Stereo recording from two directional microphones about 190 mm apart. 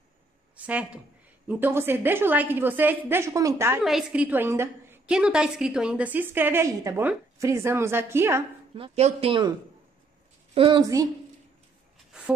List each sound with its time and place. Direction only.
0.7 s a woman's voice: 5° right (ahead or behind)
8.7 s speech: 30° right (ahead or behind)
10.5 s speech: 25° right (ahead or behind)